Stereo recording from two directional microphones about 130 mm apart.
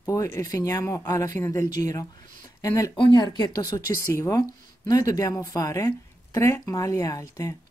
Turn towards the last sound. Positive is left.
turn(degrees=25)  # may be behind; listen again after turning